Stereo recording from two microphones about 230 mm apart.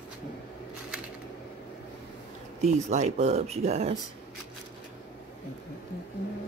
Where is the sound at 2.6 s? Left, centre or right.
Right.